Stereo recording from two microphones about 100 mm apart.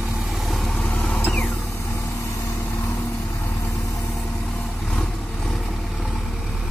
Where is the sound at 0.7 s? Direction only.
10° left (ahead or behind).